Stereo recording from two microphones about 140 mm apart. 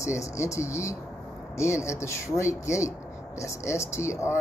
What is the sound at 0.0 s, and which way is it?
Speech, 20° left (ahead or behind).